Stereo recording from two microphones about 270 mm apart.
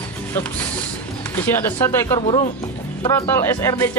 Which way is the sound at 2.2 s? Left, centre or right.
Left.